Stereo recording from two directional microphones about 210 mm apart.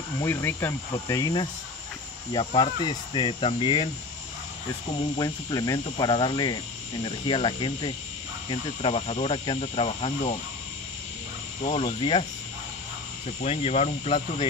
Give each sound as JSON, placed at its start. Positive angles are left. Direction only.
{"t": 0.2, "sound": "cricket", "side_deg": 10}
{"t": 2.3, "sound": "speech", "side_deg": 20}
{"t": 5.1, "sound": "speech", "side_deg": 20}
{"t": 11.7, "sound": "speech", "side_deg": 25}
{"t": 13.4, "sound": "speech", "side_deg": 30}